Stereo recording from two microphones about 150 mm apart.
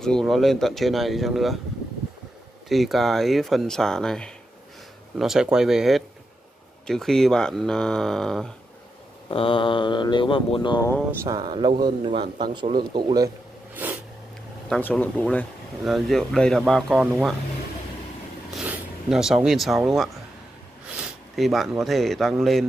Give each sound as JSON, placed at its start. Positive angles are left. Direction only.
{"t": 0.0, "sound": "speech", "side_deg": 0}
{"t": 2.7, "sound": "speech", "side_deg": 0}
{"t": 9.3, "sound": "speech", "side_deg": 35}
{"t": 11.2, "sound": "speech", "side_deg": -30}
{"t": 14.7, "sound": "speech", "side_deg": 10}
{"t": 18.5, "sound": "zipper", "side_deg": -5}
{"t": 19.8, "sound": "speech", "side_deg": 0}